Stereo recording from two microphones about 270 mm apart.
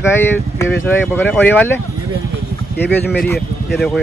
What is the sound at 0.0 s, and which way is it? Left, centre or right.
Speech, centre.